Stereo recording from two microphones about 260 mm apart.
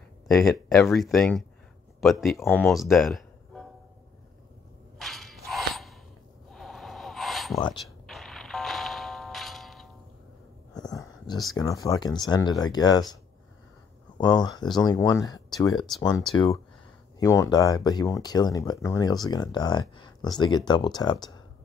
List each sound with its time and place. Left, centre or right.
0.3 s speech: centre
4.9 s a sound: centre
7.7 s music: centre
10.9 s a sound: centre
11.5 s speech: centre
14.1 s speech: centre
17.2 s speech: centre